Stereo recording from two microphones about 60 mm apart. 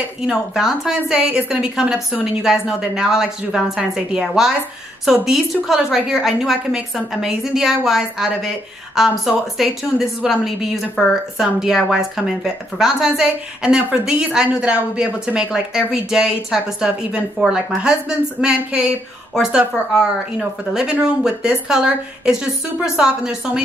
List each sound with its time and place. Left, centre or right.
0.3 s a woman's voice: centre
19.9 s speech: centre